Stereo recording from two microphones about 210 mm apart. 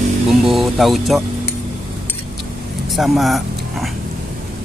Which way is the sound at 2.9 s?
Centre (ahead or behind).